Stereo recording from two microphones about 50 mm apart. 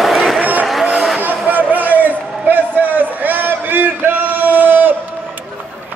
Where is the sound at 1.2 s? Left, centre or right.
Right.